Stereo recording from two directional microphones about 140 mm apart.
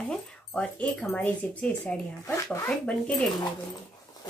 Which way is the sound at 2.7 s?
5° left (ahead or behind).